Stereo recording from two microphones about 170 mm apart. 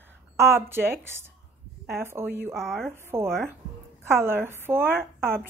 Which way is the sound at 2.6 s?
Centre (ahead or behind).